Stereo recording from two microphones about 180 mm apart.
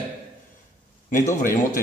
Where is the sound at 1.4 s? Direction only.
50° left (ahead or behind).